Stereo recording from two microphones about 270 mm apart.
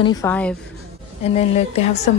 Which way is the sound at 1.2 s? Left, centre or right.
Left.